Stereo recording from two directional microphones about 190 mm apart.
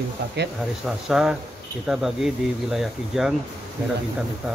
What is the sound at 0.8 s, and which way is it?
Speech, centre (ahead or behind).